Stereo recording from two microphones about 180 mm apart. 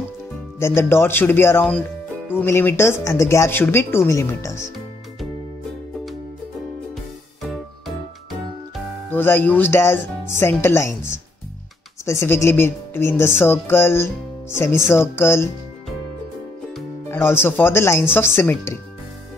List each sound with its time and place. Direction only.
0.6 s speech: 15° left (ahead or behind)
7.4 s music: centre (ahead or behind)
9.1 s speech: 10° left (ahead or behind)
12.0 s speech: 15° left (ahead or behind)
17.1 s speech: 15° left (ahead or behind)